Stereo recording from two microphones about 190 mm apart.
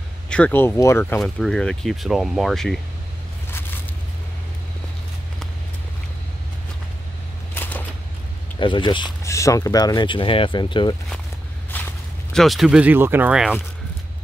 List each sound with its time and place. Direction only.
0.3 s speech: 10° left (ahead or behind)
1.2 s speech: 5° left (ahead or behind)
7.5 s a sound: 10° left (ahead or behind)
8.5 s speech: 25° left (ahead or behind)
11.7 s walk: 10° left (ahead or behind)
12.3 s speech: centre (ahead or behind)